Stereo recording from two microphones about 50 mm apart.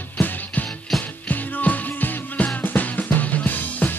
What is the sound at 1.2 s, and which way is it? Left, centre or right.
Music, left.